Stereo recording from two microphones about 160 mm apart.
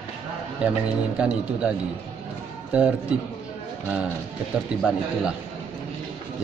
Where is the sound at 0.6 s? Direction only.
10° right (ahead or behind).